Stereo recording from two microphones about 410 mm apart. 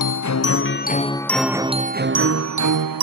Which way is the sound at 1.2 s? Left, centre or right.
Centre.